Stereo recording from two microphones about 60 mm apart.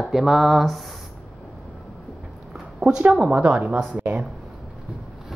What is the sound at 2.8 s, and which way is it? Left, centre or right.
Speech, centre.